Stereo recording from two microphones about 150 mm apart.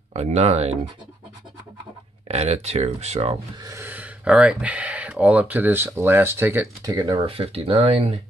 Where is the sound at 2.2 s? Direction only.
45° right (ahead or behind).